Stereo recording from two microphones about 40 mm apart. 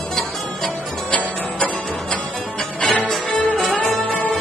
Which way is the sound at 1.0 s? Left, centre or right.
Left.